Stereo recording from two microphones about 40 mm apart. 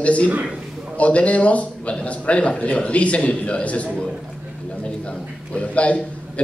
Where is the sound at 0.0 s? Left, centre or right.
Left.